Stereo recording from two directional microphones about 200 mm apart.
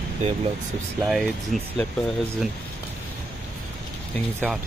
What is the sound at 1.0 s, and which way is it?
Speech, centre (ahead or behind).